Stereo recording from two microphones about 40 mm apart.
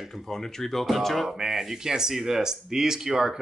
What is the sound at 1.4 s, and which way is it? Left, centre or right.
Speech, centre.